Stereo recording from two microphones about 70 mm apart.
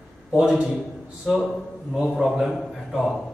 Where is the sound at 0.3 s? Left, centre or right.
Centre.